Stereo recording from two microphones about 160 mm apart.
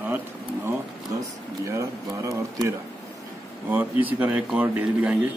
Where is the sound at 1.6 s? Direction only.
20° right (ahead or behind).